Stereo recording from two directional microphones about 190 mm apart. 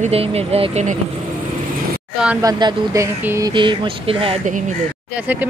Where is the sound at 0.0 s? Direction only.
30° right (ahead or behind).